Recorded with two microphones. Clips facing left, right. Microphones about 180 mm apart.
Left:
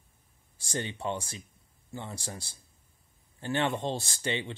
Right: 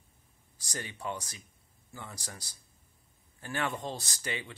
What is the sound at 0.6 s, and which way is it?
Speech, 25° left (ahead or behind).